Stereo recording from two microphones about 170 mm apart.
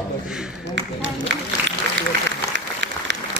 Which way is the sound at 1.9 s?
90° right.